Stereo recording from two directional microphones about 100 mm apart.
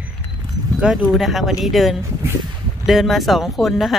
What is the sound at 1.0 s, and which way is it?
Speech, centre (ahead or behind).